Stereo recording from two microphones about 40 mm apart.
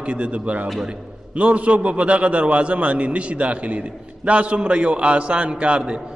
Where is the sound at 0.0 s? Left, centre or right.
Right.